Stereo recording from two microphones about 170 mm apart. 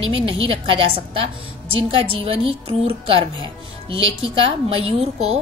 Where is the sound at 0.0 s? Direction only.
30° right (ahead or behind).